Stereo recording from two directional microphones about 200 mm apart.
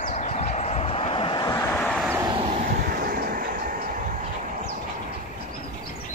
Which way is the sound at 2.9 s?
45° right (ahead or behind).